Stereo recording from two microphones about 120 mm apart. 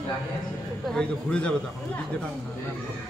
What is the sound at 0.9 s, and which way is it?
Speech, 10° left (ahead or behind).